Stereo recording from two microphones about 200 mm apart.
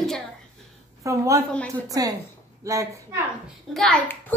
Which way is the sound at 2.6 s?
15° right (ahead or behind).